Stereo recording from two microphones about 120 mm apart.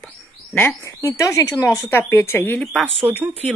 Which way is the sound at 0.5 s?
15° left (ahead or behind).